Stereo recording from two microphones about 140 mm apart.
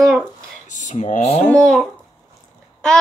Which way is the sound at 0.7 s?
60° left (ahead or behind).